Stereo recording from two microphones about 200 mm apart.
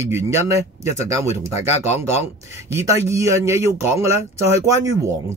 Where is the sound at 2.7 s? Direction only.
15° right (ahead or behind).